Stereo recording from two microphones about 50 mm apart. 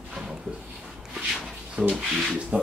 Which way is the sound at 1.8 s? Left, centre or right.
Centre.